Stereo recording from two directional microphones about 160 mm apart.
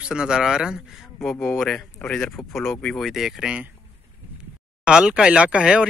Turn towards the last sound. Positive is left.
turn(degrees=-5)  # may be behind; listen again after turning